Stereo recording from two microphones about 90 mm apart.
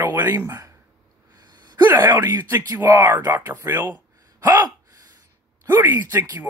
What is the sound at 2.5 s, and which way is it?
Speech, 40° right (ahead or behind).